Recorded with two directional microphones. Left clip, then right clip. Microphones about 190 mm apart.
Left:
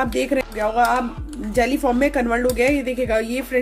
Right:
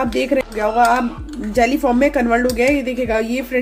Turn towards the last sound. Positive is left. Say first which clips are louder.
# right 2 dB
turn(degrees=20)  # may be behind; listen again after turning